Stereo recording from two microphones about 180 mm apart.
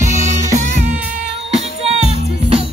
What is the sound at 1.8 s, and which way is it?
Music, 35° right (ahead or behind).